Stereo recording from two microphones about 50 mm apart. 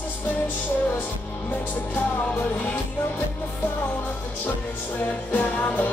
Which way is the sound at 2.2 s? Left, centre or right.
Left.